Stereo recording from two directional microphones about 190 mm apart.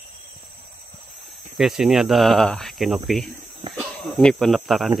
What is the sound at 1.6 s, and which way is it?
Cricket, centre (ahead or behind).